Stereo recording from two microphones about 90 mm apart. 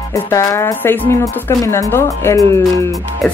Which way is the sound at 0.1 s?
35° left (ahead or behind).